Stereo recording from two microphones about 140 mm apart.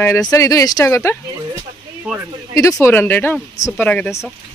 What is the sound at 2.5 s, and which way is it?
Speech, 20° left (ahead or behind).